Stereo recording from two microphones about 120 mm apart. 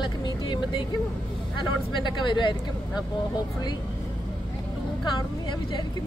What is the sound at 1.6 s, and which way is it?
Speech, 40° left (ahead or behind).